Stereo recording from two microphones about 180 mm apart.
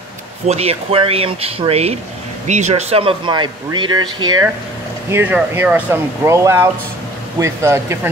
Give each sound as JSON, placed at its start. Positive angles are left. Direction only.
{"t": 0.5, "sound": "speech", "side_deg": -35}
{"t": 5.1, "sound": "speech", "side_deg": -10}